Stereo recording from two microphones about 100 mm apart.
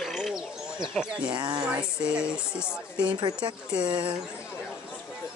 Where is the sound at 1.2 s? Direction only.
50° right (ahead or behind).